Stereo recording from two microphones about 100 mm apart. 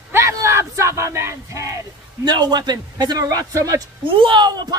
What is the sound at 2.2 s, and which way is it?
Speech, 45° right (ahead or behind).